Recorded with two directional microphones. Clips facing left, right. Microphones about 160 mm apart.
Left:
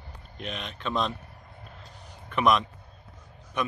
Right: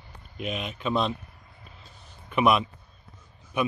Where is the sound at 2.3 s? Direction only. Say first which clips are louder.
Right 1 dB; 5° right (ahead or behind).